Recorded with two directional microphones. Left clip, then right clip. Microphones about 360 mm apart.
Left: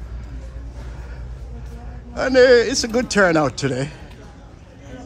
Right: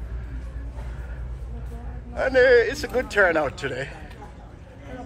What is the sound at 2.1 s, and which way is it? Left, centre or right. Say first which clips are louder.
Speech: left 4 dB; centre.